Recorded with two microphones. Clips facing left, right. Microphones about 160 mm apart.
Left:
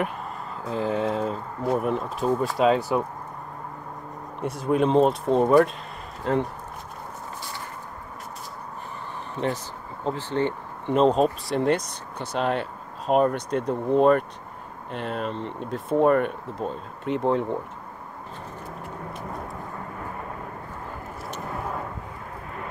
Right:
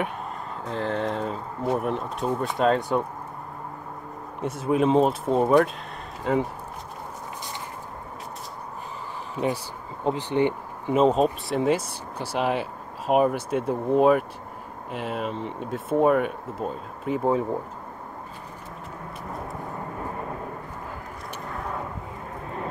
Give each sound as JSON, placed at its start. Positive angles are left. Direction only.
{"t": 0.7, "sound": "speech", "side_deg": 5}
{"t": 4.4, "sound": "speech", "side_deg": 0}
{"t": 9.3, "sound": "speech", "side_deg": -10}
{"t": 10.9, "sound": "speech", "side_deg": -5}